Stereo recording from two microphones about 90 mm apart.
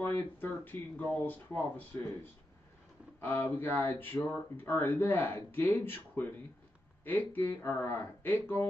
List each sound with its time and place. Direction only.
0.0 s speech: 20° left (ahead or behind)
3.2 s speech: 25° left (ahead or behind)